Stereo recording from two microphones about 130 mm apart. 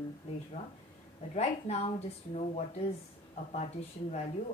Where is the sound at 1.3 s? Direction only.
50° left (ahead or behind).